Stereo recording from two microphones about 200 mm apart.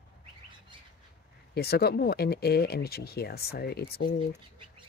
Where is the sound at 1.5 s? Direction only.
50° left (ahead or behind).